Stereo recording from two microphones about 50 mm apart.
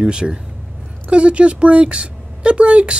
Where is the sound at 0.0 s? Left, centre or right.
Centre.